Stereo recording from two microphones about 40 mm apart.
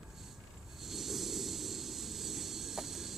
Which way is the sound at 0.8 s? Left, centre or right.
Centre.